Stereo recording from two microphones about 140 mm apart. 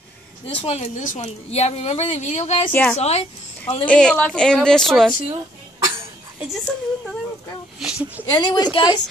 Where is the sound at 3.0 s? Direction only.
50° left (ahead or behind).